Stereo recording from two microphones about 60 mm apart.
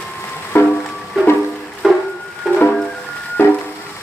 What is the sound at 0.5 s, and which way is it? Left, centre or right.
Music, left.